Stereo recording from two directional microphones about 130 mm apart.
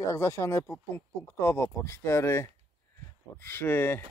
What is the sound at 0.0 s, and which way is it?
Speech, 20° left (ahead or behind).